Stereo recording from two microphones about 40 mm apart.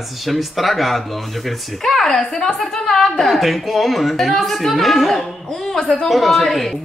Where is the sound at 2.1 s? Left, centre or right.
Centre.